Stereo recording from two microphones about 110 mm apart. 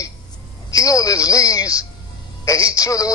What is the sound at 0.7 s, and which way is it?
A man's voice, 30° left (ahead or behind).